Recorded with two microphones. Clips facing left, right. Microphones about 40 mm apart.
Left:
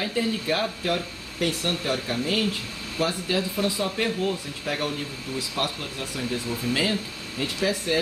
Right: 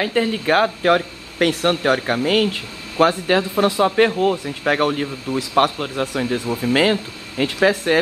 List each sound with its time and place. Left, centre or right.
0.0 s speech: right